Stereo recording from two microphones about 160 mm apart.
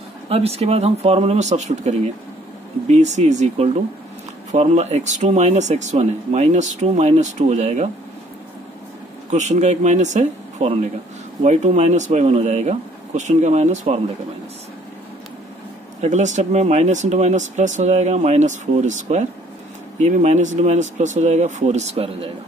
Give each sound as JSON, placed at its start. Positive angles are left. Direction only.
{"t": 0.3, "sound": "speech", "side_deg": -40}
{"t": 9.3, "sound": "speech", "side_deg": -45}
{"t": 16.0, "sound": "speech", "side_deg": -45}